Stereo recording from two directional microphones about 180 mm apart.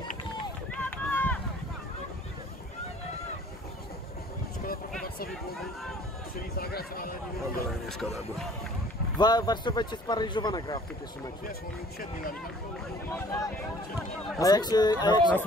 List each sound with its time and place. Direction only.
0.8 s run: 10° left (ahead or behind)
6.5 s a sound: 60° left (ahead or behind)
9.2 s a man's voice: 25° left (ahead or behind)
13.1 s a man's voice: 20° left (ahead or behind)